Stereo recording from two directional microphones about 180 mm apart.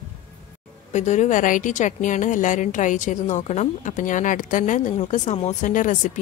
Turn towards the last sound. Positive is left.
turn(degrees=45)  # may be behind; listen again after turning